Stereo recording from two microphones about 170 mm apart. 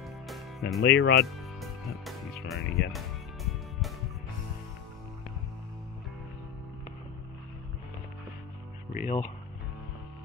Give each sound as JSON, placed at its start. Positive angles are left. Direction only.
{"t": 0.3, "sound": "music", "side_deg": 0}
{"t": 0.8, "sound": "speech", "side_deg": 70}
{"t": 1.6, "sound": "speech", "side_deg": 0}
{"t": 8.9, "sound": "speech", "side_deg": 45}